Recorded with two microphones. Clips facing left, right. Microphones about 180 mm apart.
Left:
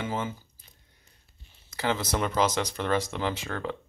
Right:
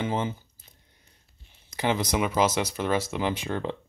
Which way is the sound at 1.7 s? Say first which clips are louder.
Right 2 dB; 15° right (ahead or behind).